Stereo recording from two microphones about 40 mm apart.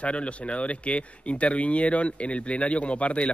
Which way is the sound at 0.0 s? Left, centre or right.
Left.